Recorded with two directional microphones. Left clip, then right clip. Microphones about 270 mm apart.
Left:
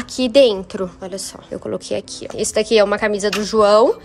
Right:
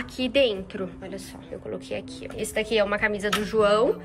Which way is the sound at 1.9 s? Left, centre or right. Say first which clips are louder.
Left 9 dB; left.